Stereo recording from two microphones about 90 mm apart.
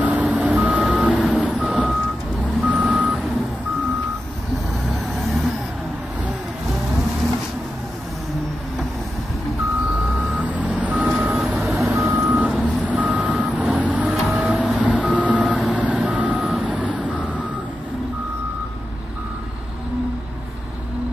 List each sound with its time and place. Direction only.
0.0 s vehicle: 15° right (ahead or behind)
5.1 s vehicle: centre (ahead or behind)
10.1 s reversing beeps: 15° right (ahead or behind)
11.4 s reversing beeps: centre (ahead or behind)
11.7 s reversing beeps: 30° right (ahead or behind)
12.3 s vehicle: 15° right (ahead or behind)
14.8 s reversing beeps: 15° right (ahead or behind)